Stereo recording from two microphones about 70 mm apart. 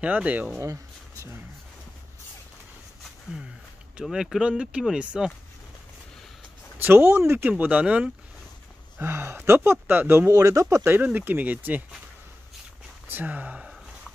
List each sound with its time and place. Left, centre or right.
0.0 s speech: centre
4.0 s speech: centre
6.8 s speech: right
8.9 s speech: right
10.3 s speech: right
11.1 s speech: right
13.1 s speech: right